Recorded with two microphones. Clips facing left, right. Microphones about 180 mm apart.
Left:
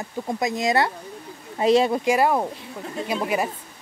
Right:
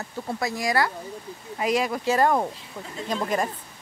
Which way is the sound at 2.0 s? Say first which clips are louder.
Left 1 dB; 10° left (ahead or behind).